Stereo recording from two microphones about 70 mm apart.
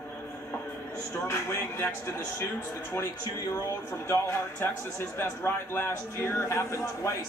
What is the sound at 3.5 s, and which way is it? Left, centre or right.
A man's voice, left.